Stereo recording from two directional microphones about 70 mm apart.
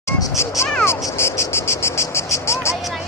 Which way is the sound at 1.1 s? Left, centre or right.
Left.